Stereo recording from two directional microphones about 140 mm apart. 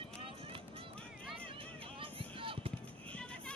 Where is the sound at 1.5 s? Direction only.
40° right (ahead or behind).